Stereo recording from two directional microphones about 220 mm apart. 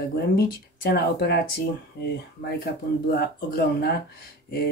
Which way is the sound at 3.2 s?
45° left (ahead or behind).